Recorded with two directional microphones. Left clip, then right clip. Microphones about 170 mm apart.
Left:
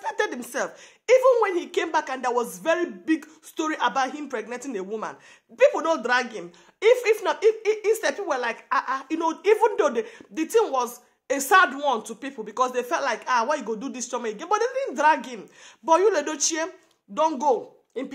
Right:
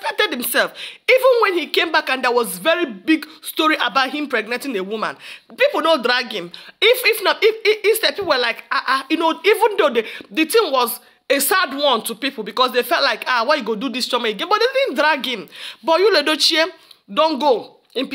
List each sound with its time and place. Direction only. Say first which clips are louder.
0.0 s a woman's voice: right 7 dB; 5° right (ahead or behind)
13.0 s speech: right 6 dB; 20° right (ahead or behind)